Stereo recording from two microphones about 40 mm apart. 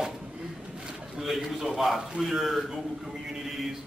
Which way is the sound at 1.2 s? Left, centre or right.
Centre.